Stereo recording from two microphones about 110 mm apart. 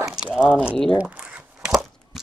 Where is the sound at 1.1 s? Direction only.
10° right (ahead or behind).